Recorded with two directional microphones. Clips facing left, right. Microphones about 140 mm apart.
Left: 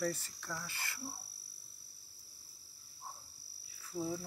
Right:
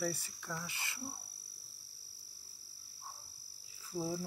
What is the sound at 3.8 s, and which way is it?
Frog, 10° right (ahead or behind).